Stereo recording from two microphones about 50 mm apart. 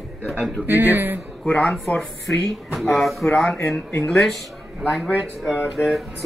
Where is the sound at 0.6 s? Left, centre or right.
Right.